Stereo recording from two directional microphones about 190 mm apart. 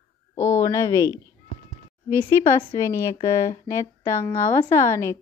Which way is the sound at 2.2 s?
15° left (ahead or behind).